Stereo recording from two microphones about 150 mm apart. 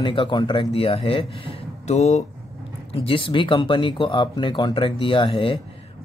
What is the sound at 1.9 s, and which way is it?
Speech, 50° left (ahead or behind).